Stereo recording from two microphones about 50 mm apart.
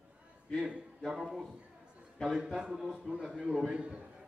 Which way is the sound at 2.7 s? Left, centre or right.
Centre.